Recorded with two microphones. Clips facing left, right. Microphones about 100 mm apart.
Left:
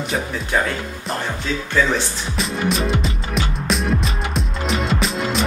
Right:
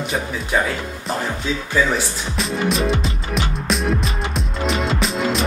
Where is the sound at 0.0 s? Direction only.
Centre (ahead or behind).